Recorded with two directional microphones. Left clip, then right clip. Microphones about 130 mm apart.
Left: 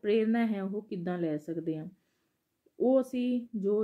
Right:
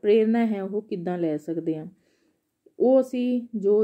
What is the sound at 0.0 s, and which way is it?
Speech, 40° right (ahead or behind).